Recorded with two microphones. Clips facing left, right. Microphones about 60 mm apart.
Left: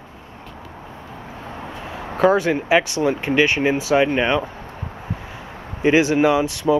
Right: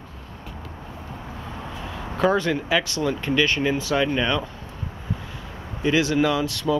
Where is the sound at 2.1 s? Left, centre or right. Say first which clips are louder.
Left 4 dB; centre.